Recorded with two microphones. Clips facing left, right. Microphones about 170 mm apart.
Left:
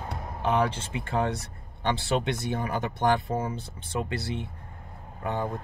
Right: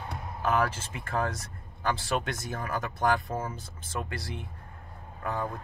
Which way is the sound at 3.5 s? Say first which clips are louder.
Left 6 dB; 70° left (ahead or behind).